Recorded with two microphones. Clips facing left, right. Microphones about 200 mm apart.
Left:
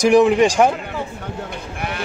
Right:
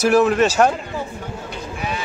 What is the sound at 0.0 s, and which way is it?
Speech, 15° left (ahead or behind).